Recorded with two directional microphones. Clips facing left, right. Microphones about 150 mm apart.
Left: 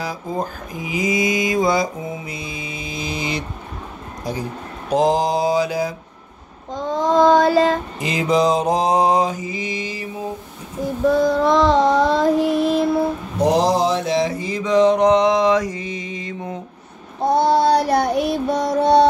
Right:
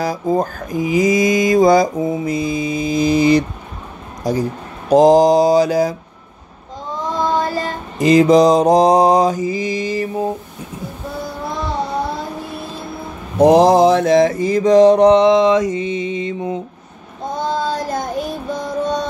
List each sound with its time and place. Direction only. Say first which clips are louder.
0.0 s mantra: right 7 dB; 40° right (ahead or behind)
6.7 s child singing: left 6 dB; 90° left
8.0 s mantra: right 10 dB; 40° right (ahead or behind)
11.1 s child singing: left 12 dB; 90° left
13.4 s mantra: right 7 dB; 55° right (ahead or behind); by 16.5 s 25° right (ahead or behind)
17.2 s child singing: left 6 dB; 75° left (ahead or behind)